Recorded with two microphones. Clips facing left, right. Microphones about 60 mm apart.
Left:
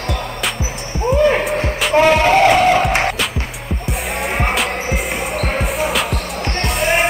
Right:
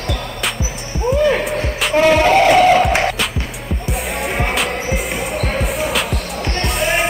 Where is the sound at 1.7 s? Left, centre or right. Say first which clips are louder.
Even; centre.